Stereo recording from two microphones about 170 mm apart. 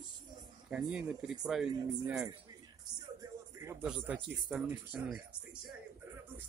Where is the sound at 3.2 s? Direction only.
15° right (ahead or behind).